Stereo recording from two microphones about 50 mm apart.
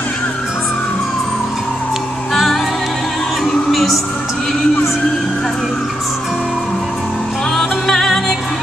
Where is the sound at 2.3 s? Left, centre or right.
Centre.